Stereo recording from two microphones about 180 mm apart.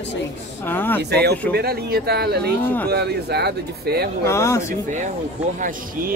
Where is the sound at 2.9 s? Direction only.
65° right (ahead or behind).